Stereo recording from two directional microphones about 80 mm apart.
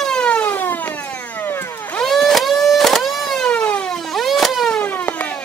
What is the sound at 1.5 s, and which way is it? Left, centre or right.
Vehicle, left.